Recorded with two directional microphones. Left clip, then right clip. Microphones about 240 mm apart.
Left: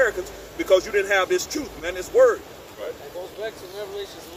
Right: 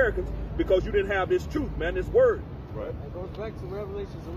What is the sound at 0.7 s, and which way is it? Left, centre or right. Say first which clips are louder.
Speech: left 6 dB; centre.